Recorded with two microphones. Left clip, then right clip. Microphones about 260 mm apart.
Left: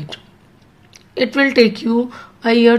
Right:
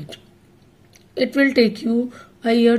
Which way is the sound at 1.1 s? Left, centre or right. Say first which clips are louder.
Left 3 dB; centre.